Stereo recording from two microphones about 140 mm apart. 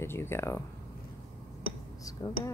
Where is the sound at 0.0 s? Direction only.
15° left (ahead or behind).